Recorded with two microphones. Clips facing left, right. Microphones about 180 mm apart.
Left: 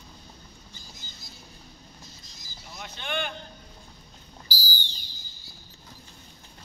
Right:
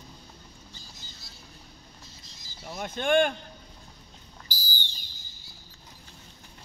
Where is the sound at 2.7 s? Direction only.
50° right (ahead or behind).